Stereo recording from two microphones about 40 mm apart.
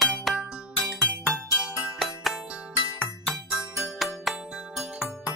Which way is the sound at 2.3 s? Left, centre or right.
Right.